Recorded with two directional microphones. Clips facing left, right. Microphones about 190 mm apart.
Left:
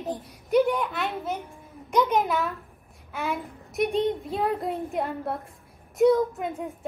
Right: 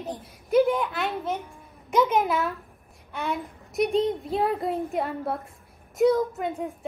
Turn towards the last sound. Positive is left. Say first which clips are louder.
# even
turn(degrees=0)  # may be behind; listen again after turning